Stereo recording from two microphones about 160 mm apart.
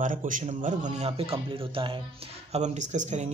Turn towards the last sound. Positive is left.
turn(degrees=-45)  # may be behind; listen again after turning